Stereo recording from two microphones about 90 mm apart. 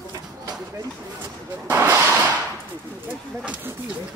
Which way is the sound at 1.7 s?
30° right (ahead or behind).